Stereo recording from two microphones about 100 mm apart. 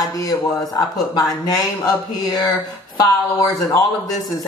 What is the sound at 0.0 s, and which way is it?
Speech, 40° left (ahead or behind).